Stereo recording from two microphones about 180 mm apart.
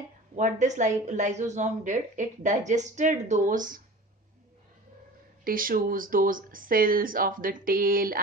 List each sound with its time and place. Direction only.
0.4 s a woman's voice: 45° right (ahead or behind)
5.4 s a woman's voice: 50° right (ahead or behind)